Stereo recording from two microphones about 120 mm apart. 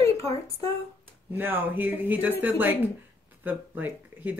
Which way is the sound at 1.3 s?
15° right (ahead or behind).